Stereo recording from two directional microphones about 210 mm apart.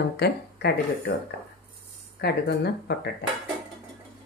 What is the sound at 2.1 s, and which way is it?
Speech, 50° left (ahead or behind).